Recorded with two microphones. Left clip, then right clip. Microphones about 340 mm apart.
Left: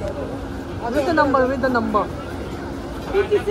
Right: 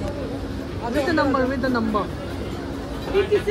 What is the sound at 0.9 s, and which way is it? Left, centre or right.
Speech, centre.